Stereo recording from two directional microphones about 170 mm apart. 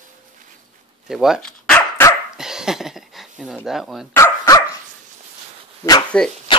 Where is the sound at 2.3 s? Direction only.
5° right (ahead or behind).